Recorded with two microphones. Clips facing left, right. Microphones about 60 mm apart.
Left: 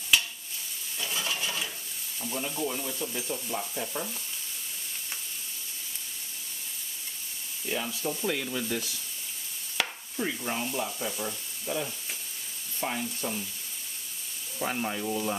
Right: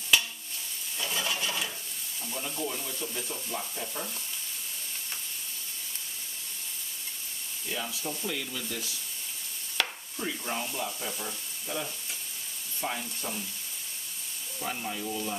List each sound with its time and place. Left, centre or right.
0.9 s stir: centre
2.2 s frying: centre
8.0 s frying: centre
8.3 s frying: left
9.8 s chopping: centre
10.9 s frying: centre
14.6 s frying: left
15.0 s speech: left